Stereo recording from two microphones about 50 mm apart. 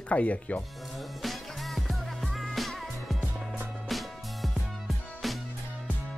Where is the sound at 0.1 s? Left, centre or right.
Left.